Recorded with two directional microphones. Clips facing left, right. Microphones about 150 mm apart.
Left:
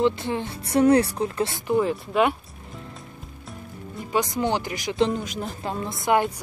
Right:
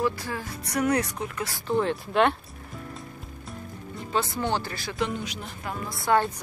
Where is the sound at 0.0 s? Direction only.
25° left (ahead or behind).